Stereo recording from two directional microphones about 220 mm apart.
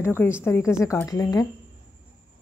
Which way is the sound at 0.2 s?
10° left (ahead or behind).